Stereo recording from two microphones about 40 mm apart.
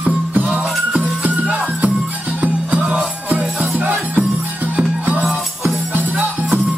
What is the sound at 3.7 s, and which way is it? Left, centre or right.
Music, right.